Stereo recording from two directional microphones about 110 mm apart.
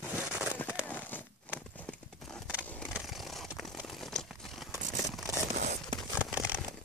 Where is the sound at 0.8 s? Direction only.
15° left (ahead or behind).